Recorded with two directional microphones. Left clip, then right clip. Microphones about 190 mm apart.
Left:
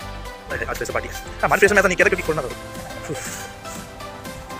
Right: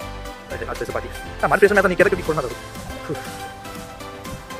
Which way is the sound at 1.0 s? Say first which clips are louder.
Even; 20° right (ahead or behind).